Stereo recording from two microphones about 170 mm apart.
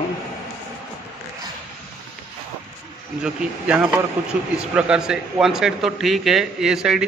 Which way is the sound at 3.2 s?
5° right (ahead or behind).